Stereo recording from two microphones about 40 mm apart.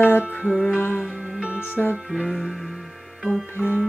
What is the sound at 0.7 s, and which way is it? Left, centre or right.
Music, left.